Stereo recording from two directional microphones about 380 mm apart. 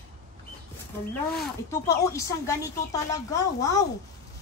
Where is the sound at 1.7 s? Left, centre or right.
Centre.